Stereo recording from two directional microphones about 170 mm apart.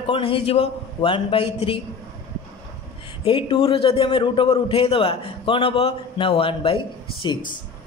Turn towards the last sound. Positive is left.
turn(degrees=30)  # may be behind; listen again after turning